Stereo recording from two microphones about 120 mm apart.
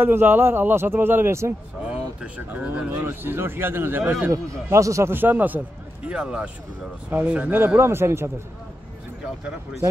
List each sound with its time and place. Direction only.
0.0 s speech: 15° right (ahead or behind)